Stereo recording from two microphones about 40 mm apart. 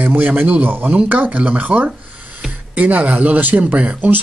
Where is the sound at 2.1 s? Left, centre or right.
Right.